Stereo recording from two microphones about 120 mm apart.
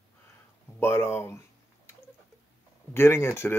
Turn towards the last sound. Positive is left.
turn(degrees=20)  # may be behind; listen again after turning